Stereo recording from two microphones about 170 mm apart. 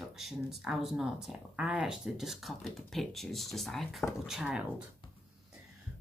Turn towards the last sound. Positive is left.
turn(degrees=-5)  # may be behind; listen again after turning